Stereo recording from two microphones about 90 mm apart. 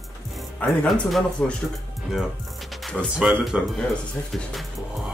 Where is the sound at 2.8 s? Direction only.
5° right (ahead or behind).